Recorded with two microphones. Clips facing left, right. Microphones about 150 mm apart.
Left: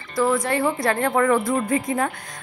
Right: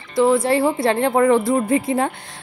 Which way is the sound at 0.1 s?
25° right (ahead or behind).